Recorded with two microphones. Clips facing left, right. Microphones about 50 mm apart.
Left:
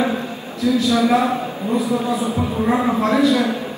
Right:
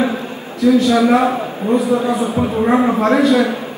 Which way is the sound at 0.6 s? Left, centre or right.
Right.